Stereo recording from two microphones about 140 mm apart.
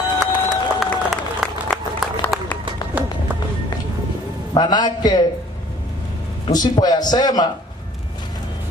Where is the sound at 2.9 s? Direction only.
10° right (ahead or behind).